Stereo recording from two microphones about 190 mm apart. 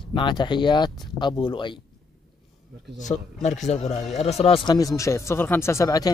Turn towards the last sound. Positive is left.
turn(degrees=20)  # may be behind; listen again after turning